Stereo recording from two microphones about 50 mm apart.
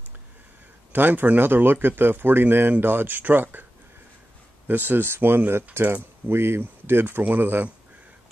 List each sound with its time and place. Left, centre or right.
0.9 s speech: right
4.6 s speech: right